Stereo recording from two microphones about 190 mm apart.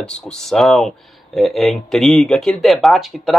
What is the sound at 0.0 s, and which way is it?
Speech, 5° left (ahead or behind).